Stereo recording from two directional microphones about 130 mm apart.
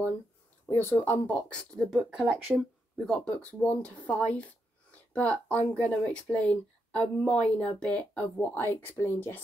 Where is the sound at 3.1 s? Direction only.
10° left (ahead or behind).